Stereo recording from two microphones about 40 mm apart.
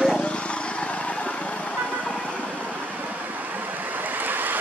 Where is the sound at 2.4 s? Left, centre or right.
Right.